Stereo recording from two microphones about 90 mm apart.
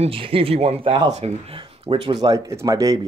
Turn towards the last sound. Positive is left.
turn(degrees=-40)  # may be behind; listen again after turning